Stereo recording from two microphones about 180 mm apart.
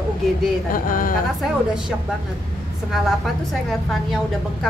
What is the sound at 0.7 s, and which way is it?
Speech, 50° left (ahead or behind).